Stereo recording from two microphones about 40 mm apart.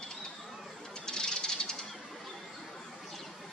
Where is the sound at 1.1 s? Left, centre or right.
Centre.